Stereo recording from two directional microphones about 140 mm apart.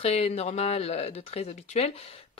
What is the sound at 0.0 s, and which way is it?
Speech, 45° left (ahead or behind).